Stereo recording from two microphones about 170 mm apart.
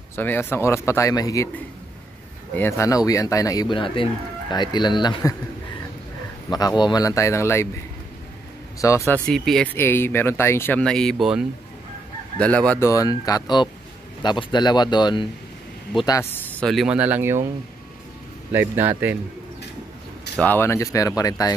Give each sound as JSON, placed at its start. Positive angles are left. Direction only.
{"t": 0.1, "sound": "speech", "side_deg": 15}
{"t": 2.5, "sound": "speech", "side_deg": 15}
{"t": 6.5, "sound": "speech", "side_deg": 25}
{"t": 8.8, "sound": "speech", "side_deg": 15}
{"t": 9.2, "sound": "speech", "side_deg": 5}
{"t": 9.8, "sound": "speech", "side_deg": 15}
{"t": 12.8, "sound": "speech", "side_deg": 20}
{"t": 16.1, "sound": "speech", "side_deg": 15}
{"t": 18.5, "sound": "a man's voice", "side_deg": -10}
{"t": 20.3, "sound": "speech", "side_deg": 10}